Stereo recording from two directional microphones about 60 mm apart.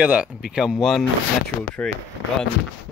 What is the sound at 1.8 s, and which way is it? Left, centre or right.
Speech, centre.